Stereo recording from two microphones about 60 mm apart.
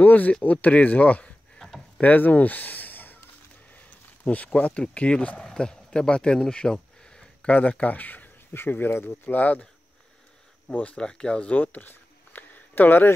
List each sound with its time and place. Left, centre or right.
0.0 s speech: left
1.6 s a sound: centre
2.0 s a sound: left
3.7 s speech: left
7.5 s speech: left
10.7 s speech: left